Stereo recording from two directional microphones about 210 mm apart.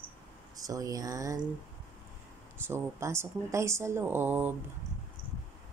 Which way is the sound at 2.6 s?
10° right (ahead or behind).